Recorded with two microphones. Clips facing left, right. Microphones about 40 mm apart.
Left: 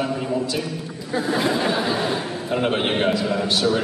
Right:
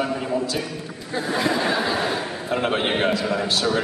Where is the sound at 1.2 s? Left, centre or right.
Centre.